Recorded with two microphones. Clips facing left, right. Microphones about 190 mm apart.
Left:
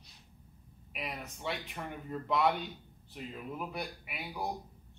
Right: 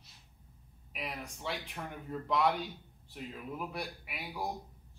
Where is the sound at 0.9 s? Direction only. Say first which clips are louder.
Even; centre (ahead or behind).